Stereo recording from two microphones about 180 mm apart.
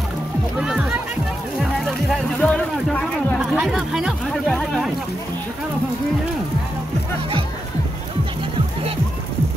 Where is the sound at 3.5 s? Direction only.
5° right (ahead or behind).